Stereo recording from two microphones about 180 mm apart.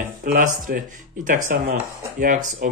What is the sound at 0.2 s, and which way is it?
Speech, 50° right (ahead or behind).